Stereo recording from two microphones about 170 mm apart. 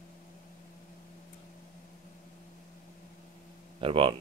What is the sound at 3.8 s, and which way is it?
Speech, 30° right (ahead or behind).